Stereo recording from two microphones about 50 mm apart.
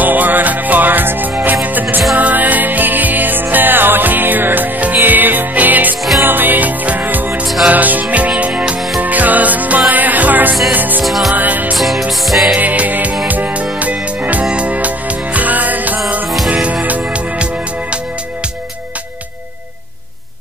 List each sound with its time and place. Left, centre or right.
0.0 s music: right
11.1 s music: centre
11.3 s music: right
11.7 s music: centre
12.5 s music: right
14.4 s music: right